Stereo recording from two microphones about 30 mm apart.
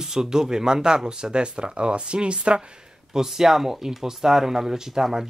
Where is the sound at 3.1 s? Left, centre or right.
Centre.